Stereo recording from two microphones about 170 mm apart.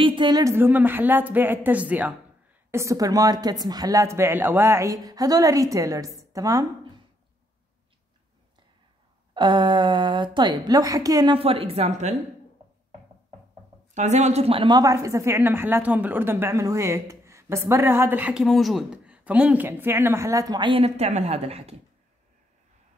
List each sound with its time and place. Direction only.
0.0 s a woman's voice: 30° right (ahead or behind)
9.3 s a woman's voice: 25° right (ahead or behind)
13.9 s a woman's voice: 45° right (ahead or behind)